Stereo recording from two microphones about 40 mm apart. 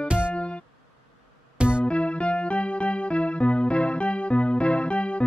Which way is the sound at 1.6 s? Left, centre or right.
Right.